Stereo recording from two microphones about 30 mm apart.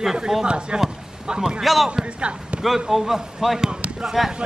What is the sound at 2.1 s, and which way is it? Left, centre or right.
Speech, right.